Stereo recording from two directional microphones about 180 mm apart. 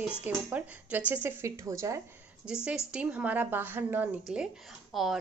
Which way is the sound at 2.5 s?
5° right (ahead or behind).